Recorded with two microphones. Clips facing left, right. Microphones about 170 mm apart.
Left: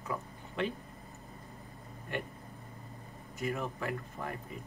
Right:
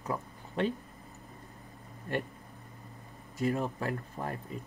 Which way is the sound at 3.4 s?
35° right (ahead or behind).